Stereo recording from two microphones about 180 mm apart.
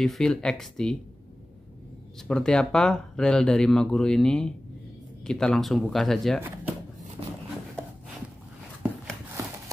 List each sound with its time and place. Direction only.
0.0 s speech: centre (ahead or behind)
2.2 s speech: 5° left (ahead or behind)
6.4 s speech: 10° right (ahead or behind)
7.2 s a sound: 30° right (ahead or behind)